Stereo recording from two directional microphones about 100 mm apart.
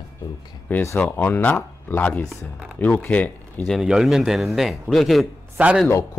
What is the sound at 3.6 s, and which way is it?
A man's voice, 5° right (ahead or behind).